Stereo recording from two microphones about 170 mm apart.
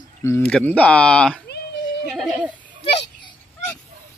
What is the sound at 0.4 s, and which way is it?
Speech, 5° left (ahead or behind).